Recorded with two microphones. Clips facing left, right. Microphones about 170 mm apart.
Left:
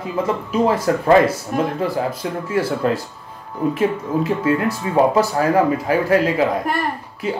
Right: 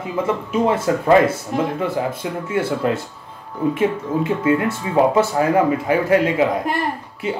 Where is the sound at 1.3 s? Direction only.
25° right (ahead or behind).